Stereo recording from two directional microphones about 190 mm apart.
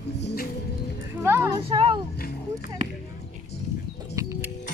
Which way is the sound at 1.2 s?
15° right (ahead or behind).